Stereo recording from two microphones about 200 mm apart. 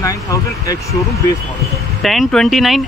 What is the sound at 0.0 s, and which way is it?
Speech, 15° left (ahead or behind).